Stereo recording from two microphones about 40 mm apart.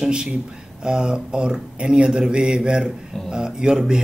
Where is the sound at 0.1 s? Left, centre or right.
Right.